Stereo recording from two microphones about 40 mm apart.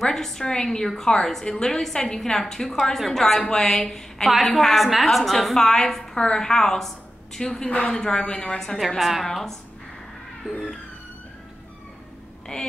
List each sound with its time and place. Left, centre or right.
0.0 s a woman's voice: centre
8.7 s a woman's voice: centre
10.4 s emergency vehicle: right
12.5 s a woman's voice: left